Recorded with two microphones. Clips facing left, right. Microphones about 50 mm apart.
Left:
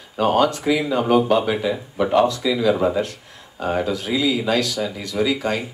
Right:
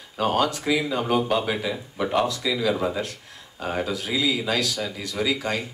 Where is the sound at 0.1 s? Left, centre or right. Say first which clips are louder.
Left 5 dB; centre.